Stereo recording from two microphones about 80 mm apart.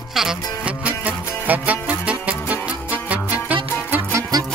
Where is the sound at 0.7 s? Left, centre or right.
Centre.